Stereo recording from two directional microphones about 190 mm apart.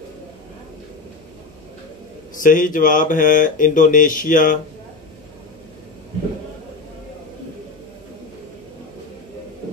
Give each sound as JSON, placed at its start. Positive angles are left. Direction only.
{"t": 2.4, "sound": "speech", "side_deg": 45}